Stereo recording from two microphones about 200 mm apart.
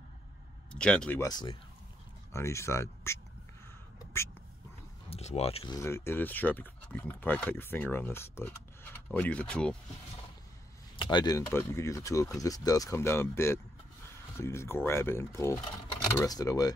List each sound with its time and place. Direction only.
0.7 s speech: 5° left (ahead or behind)
5.1 s speech: 30° left (ahead or behind)
5.8 s speech: 15° left (ahead or behind)
11.0 s speech: 20° left (ahead or behind)